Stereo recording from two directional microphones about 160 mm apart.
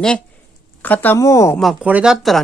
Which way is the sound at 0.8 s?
10° left (ahead or behind).